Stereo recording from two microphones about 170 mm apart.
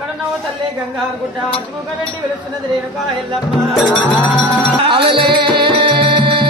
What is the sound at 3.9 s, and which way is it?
Music, 10° left (ahead or behind).